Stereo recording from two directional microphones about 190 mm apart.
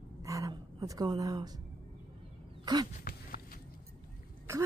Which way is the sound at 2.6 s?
20° right (ahead or behind).